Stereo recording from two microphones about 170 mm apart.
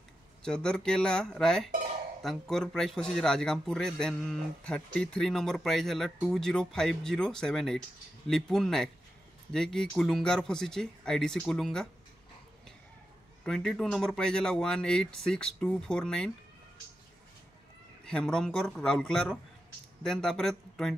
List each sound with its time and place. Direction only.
0.4 s a man's voice: 5° left (ahead or behind)
13.4 s a man's voice: 5° left (ahead or behind)
18.0 s a man's voice: 5° left (ahead or behind)